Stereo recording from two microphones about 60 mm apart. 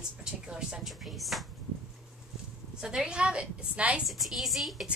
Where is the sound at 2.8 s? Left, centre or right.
Centre.